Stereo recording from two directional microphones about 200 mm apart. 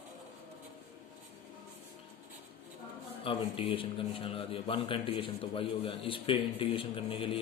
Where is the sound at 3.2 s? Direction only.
25° left (ahead or behind).